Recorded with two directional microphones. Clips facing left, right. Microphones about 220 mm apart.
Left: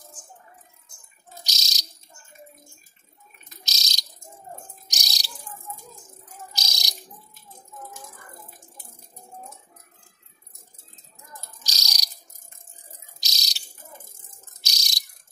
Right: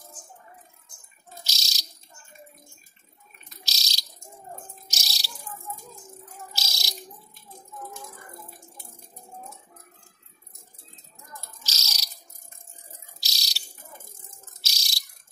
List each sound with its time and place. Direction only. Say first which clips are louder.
1.4 s bird: left 1 dB; 20° left (ahead or behind)
3.6 s bird: left 1 dB; 20° left (ahead or behind)
6.5 s bird: right 1 dB; 20° left (ahead or behind)
11.6 s a sound: left 1 dB; 15° left (ahead or behind)
13.2 s bird: left 3 dB; 20° left (ahead or behind)
14.6 s bird: left 3 dB; 20° left (ahead or behind)